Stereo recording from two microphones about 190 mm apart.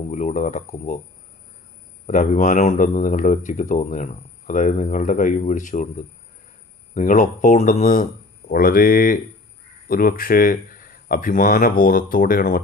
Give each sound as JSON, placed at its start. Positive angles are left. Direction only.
{"t": 0.1, "sound": "speech", "side_deg": 40}
{"t": 2.0, "sound": "speech", "side_deg": 40}